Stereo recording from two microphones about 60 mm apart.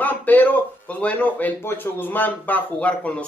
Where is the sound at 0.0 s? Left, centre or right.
Left.